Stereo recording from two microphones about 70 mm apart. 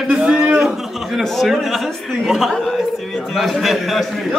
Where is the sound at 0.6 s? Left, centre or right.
Centre.